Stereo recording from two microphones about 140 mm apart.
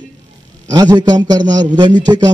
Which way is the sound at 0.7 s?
30° right (ahead or behind).